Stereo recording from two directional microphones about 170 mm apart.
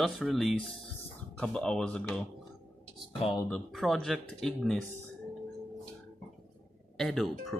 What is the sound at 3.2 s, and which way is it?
Speech, 30° left (ahead or behind).